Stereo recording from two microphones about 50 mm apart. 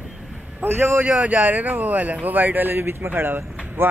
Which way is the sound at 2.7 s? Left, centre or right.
Right.